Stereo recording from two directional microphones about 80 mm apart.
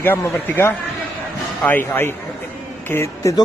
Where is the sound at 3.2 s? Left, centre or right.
Left.